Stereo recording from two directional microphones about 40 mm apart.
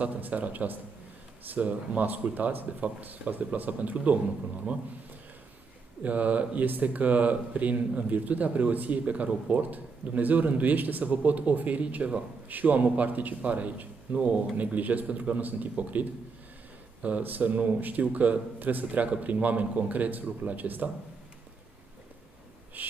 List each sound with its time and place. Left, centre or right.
0.0 s a man's voice: right
6.0 s a man's voice: right
17.2 s a man's voice: right
18.0 s speech: right
18.9 s speech: right
22.8 s a man's voice: right